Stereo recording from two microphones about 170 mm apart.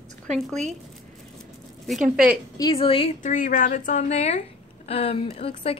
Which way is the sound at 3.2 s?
50° left (ahead or behind).